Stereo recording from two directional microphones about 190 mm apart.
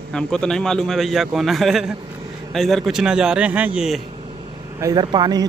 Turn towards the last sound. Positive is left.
turn(degrees=-20)  # may be behind; listen again after turning